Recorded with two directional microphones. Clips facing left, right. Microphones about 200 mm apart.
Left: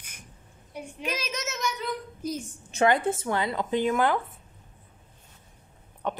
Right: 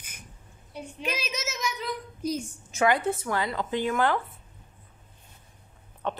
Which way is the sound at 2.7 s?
25° left (ahead or behind).